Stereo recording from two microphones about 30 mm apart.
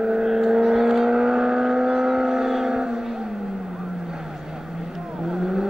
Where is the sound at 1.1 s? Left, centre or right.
Centre.